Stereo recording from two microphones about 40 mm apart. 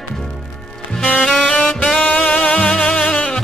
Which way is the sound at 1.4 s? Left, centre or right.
Left.